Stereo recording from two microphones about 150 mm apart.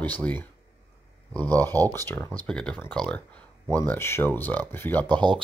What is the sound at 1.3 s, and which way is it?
Speech, 10° left (ahead or behind).